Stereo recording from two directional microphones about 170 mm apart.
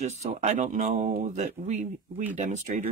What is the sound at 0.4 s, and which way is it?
Speech, 45° right (ahead or behind).